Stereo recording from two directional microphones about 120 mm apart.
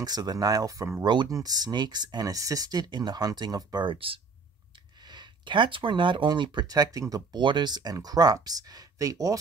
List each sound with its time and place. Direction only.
0.0 s speech: 35° right (ahead or behind)